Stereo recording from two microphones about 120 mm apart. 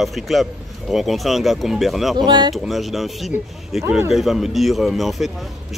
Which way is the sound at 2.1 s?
35° right (ahead or behind).